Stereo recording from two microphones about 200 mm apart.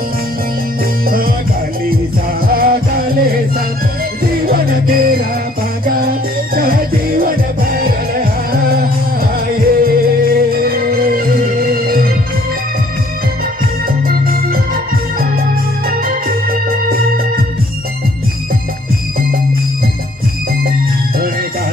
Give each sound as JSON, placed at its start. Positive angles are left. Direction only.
{"t": 1.0, "sound": "music", "side_deg": -45}
{"t": 2.4, "sound": "music", "side_deg": -45}
{"t": 4.5, "sound": "music", "side_deg": -45}
{"t": 13.8, "sound": "organ", "side_deg": -45}